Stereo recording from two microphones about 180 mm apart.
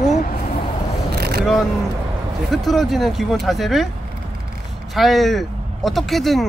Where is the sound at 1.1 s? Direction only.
60° right (ahead or behind).